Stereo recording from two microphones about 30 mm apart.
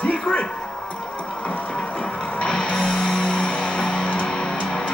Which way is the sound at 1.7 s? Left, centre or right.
Left.